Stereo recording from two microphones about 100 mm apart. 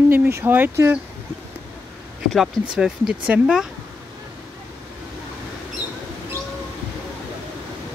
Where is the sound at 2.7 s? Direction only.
10° right (ahead or behind).